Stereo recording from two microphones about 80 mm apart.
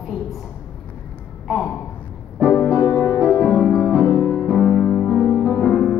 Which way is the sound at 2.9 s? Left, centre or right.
Centre.